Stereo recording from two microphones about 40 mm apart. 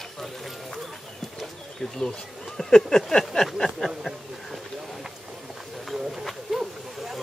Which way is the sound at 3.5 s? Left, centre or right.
Centre.